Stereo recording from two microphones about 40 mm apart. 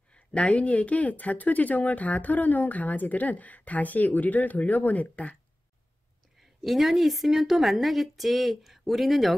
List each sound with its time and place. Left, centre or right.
0.1 s speech: left
6.6 s a woman's voice: centre